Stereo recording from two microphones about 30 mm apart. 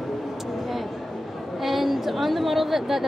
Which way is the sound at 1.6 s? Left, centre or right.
Centre.